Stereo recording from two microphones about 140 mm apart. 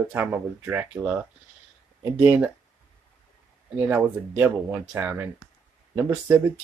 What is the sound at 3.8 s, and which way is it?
Speech, 10° right (ahead or behind).